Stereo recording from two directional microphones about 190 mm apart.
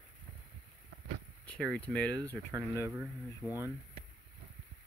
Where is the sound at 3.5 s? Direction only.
10° right (ahead or behind).